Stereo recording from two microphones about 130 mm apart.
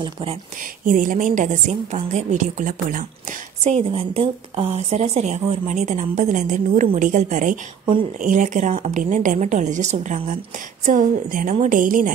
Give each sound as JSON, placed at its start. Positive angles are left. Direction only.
{"t": 0.0, "sound": "speech", "side_deg": -45}
{"t": 0.8, "sound": "a woman's voice", "side_deg": -90}
{"t": 3.9, "sound": "a woman's voice", "side_deg": -50}
{"t": 8.2, "sound": "a woman's voice", "side_deg": -85}
{"t": 10.9, "sound": "a woman's voice", "side_deg": -90}